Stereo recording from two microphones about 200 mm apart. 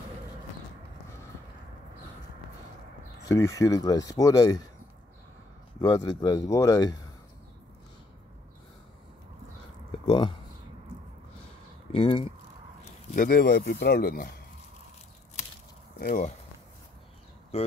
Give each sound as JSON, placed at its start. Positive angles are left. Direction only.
{"t": 3.3, "sound": "speech", "side_deg": 15}
{"t": 5.8, "sound": "speech", "side_deg": 20}
{"t": 10.0, "sound": "a sound", "side_deg": 25}
{"t": 11.9, "sound": "speech", "side_deg": 25}
{"t": 13.1, "sound": "speech", "side_deg": 45}
{"t": 16.0, "sound": "speech", "side_deg": 50}
{"t": 17.5, "sound": "speech", "side_deg": 30}